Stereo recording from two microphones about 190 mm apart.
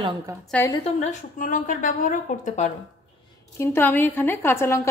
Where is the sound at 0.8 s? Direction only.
35° left (ahead or behind).